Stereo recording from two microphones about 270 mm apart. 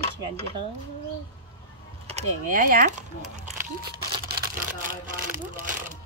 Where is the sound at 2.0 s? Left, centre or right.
Right.